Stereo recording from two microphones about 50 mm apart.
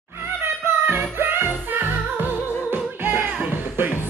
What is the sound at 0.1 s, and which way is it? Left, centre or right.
Music, right.